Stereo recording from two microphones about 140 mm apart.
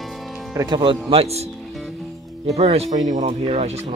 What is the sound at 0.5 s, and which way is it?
Speech, 30° right (ahead or behind).